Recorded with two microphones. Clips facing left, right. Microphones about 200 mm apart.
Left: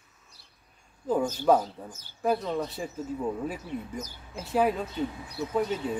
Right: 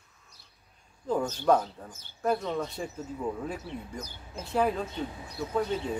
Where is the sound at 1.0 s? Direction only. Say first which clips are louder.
Left 2 dB; 5° left (ahead or behind).